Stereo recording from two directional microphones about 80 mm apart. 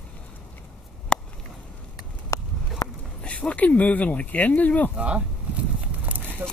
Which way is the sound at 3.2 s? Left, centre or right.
Centre.